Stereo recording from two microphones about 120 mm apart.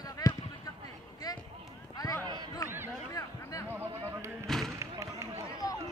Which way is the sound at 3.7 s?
15° right (ahead or behind).